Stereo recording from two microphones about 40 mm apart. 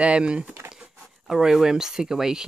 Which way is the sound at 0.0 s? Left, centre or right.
Right.